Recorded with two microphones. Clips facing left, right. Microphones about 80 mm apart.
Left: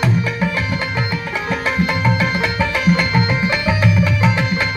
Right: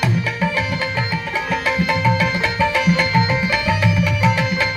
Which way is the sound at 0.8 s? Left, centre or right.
Centre.